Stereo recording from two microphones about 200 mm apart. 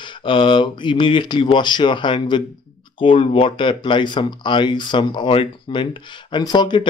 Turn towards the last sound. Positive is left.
turn(degrees=20)  # may be behind; listen again after turning